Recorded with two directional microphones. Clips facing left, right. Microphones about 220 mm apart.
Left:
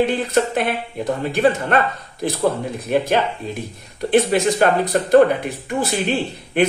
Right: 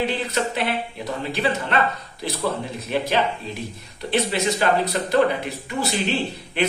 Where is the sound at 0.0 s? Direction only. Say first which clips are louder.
Left 6 dB; 50° left (ahead or behind).